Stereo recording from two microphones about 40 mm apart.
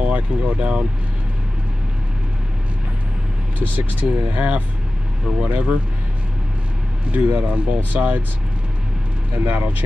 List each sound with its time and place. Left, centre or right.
0.0 s speech: right
4.0 s speech: right
7.1 s speech: right
9.5 s speech: right